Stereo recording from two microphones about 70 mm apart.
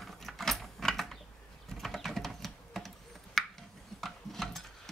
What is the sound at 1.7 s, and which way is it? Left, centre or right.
Typing, centre.